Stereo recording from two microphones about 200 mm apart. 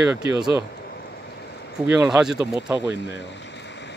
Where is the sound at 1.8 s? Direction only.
5° right (ahead or behind).